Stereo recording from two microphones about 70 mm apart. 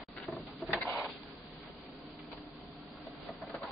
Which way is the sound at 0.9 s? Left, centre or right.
Centre.